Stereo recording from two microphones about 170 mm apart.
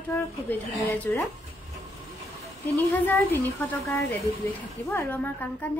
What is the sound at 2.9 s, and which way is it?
A woman's voice, 10° left (ahead or behind).